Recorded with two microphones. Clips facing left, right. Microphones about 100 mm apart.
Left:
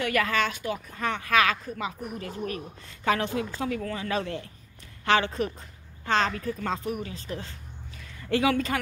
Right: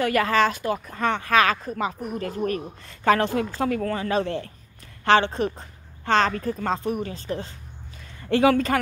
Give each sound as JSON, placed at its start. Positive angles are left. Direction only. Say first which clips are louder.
{"t": 0.0, "sound": "speech", "louder": "right 5 dB", "side_deg": -35}
{"t": 1.1, "sound": "speech", "louder": "right 3 dB", "side_deg": -35}
{"t": 4.1, "sound": "speech", "louder": "right 5 dB", "side_deg": -35}
{"t": 6.1, "sound": "speech", "louder": "right 4 dB", "side_deg": -40}
{"t": 6.8, "sound": "speech", "louder": "right 5 dB", "side_deg": -30}